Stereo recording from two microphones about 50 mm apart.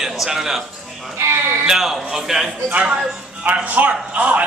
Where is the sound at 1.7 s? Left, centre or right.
Centre.